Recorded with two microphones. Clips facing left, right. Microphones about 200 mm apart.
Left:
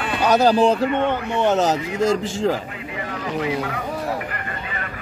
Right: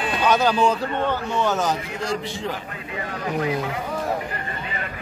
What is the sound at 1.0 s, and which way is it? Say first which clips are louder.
Speech: left 2 dB; 20° left (ahead or behind).